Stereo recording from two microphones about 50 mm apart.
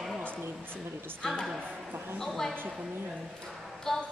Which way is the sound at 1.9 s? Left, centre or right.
Right.